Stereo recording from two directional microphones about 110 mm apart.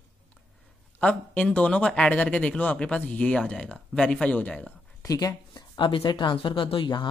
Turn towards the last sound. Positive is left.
turn(degrees=50)  # may be behind; listen again after turning